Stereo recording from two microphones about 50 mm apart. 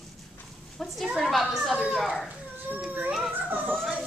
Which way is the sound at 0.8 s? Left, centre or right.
Centre.